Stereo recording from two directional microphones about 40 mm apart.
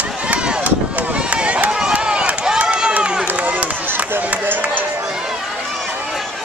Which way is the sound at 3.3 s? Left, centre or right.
Right.